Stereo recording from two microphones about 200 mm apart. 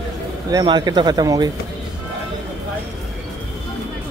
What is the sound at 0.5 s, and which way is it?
Speech, 20° right (ahead or behind).